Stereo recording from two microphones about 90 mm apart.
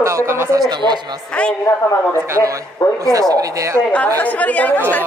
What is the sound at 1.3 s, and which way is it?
Speech, 10° left (ahead or behind).